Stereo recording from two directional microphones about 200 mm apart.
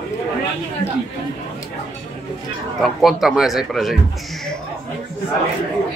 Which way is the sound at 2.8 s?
Centre (ahead or behind).